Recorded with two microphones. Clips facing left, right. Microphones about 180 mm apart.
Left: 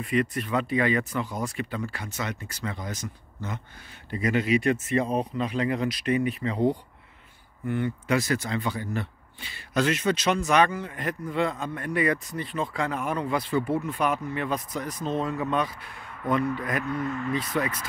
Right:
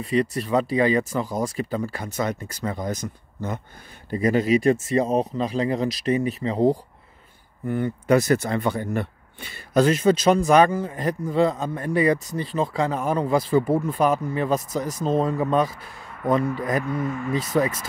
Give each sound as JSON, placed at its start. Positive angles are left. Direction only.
{"t": 0.0, "sound": "a man's voice", "side_deg": -35}
{"t": 3.3, "sound": "a sound", "side_deg": -45}
{"t": 4.1, "sound": "a man's voice", "side_deg": -40}
{"t": 9.8, "sound": "a man's voice", "side_deg": -35}
{"t": 16.8, "sound": "speech", "side_deg": -10}
{"t": 17.3, "sound": "a man's voice", "side_deg": -40}